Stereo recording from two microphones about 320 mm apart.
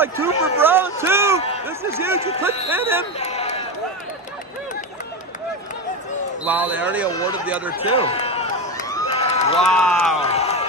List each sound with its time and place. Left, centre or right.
0.0 s a sound: centre
1.7 s a man's voice: centre
3.2 s a sound: centre
6.4 s speech: centre
7.9 s run: centre
9.6 s speech: centre
10.2 s crowd: centre